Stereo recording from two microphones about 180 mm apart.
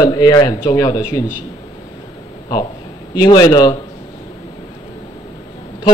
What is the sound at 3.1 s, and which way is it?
Speech, 25° left (ahead or behind).